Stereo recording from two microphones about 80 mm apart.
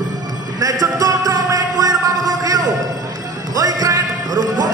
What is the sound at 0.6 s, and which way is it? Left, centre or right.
Music, right.